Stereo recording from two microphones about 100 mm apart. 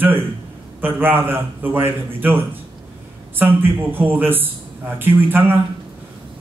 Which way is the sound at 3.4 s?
20° right (ahead or behind).